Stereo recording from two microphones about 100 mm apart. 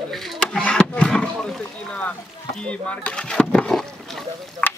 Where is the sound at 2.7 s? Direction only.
10° left (ahead or behind).